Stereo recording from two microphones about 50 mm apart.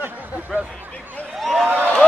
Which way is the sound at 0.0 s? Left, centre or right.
Right.